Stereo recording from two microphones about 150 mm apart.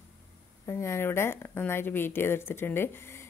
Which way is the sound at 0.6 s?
20° left (ahead or behind).